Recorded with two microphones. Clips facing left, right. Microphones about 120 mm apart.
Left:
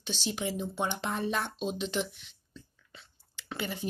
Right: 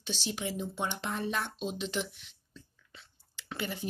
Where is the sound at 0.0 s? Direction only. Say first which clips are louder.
Left 2 dB; 5° right (ahead or behind).